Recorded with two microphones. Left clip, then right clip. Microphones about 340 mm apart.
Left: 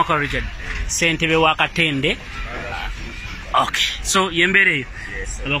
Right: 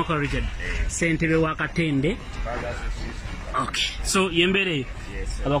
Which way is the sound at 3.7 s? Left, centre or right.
Centre.